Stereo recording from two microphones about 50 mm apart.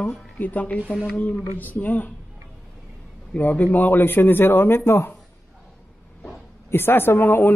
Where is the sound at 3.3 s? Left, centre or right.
Left.